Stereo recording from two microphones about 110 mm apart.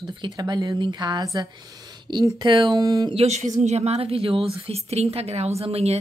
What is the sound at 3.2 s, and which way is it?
A woman's voice, 90° right.